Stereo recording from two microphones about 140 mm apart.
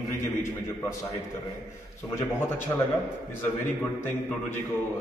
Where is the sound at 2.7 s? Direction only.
20° left (ahead or behind).